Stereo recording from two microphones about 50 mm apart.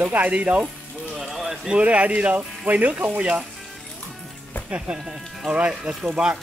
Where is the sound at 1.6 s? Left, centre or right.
Right.